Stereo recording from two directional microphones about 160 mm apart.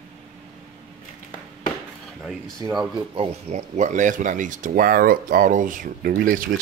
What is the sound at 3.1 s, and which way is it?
Speech, 40° right (ahead or behind).